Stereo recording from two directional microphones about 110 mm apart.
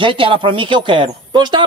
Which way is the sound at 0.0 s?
50° right (ahead or behind).